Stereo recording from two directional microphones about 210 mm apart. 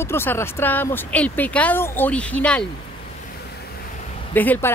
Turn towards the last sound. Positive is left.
turn(degrees=10)  # may be behind; listen again after turning